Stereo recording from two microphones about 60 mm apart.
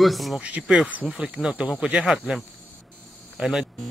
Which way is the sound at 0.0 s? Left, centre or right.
Centre.